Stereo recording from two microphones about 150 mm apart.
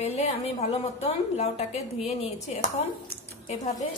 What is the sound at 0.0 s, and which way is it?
A woman's voice, 50° left (ahead or behind).